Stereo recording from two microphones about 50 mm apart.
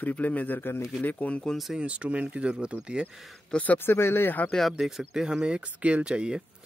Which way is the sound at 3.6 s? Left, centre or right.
Left.